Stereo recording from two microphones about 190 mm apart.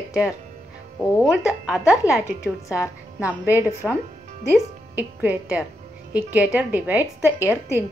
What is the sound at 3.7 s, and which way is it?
Speech, 15° left (ahead or behind).